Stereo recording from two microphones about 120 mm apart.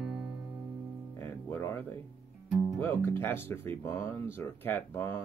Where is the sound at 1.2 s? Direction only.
20° left (ahead or behind).